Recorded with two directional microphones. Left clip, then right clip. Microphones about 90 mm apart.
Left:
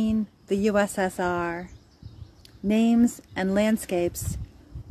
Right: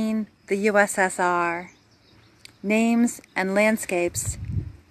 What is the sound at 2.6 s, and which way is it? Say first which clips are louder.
A woman's voice: right 1 dB; 15° left (ahead or behind).